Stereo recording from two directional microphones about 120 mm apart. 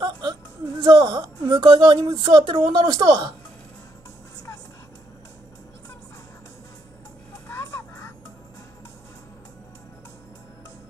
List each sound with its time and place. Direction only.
0.0 s music: 35° right (ahead or behind)
0.8 s a woman's voice: 35° right (ahead or behind)
7.4 s music: 25° left (ahead or behind)